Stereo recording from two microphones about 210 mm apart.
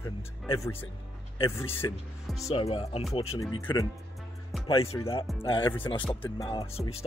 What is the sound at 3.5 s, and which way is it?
Speech, 15° left (ahead or behind).